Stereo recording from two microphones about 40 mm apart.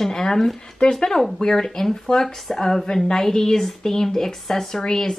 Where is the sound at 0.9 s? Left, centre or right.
Centre.